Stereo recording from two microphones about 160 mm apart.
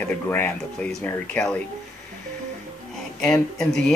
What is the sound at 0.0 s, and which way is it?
Speech, 10° left (ahead or behind).